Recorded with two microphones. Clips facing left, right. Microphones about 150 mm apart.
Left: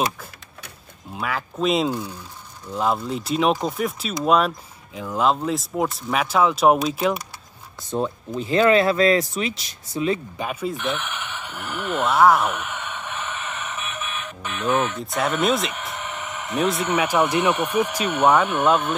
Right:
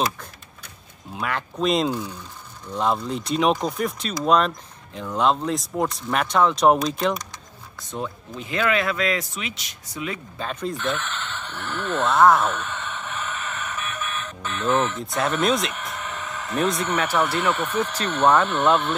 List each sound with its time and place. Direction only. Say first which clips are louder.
1.1 s speech: even; centre (ahead or behind)
7.9 s speech: left 6 dB; 35° left (ahead or behind)
10.3 s a sound: left 2 dB; 10° left (ahead or behind)
15.0 s speech: left 1 dB; centre (ahead or behind)
16.0 s a sound: left 1 dB; 15° left (ahead or behind)
16.5 s speech: left 1 dB; 5° left (ahead or behind)